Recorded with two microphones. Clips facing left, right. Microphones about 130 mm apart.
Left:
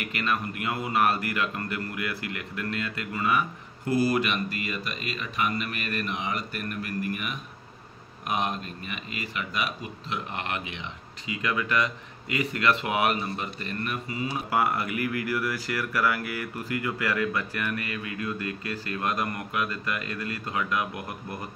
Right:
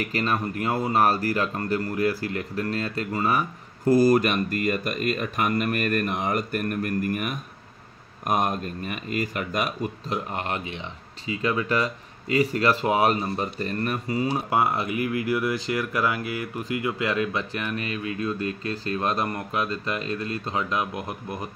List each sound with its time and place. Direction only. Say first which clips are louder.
0.0 s speech: right 4 dB; 35° right (ahead or behind)
14.5 s speech: left 1 dB; 25° right (ahead or behind)